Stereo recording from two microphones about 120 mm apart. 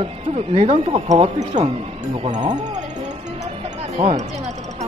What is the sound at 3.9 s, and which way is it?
Speech, 60° right (ahead or behind).